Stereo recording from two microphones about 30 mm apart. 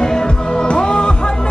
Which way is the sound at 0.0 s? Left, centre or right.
Left.